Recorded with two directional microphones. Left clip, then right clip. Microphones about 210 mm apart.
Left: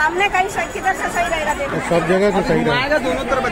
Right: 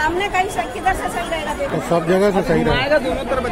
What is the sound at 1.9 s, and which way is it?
Speech, 15° right (ahead or behind).